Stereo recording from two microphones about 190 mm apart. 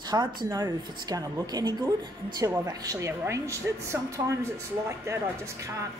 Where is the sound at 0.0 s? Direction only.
20° right (ahead or behind).